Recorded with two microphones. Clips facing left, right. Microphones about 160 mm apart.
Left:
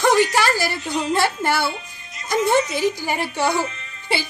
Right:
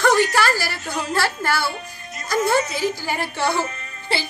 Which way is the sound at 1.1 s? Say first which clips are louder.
Left 2 dB; 20° left (ahead or behind).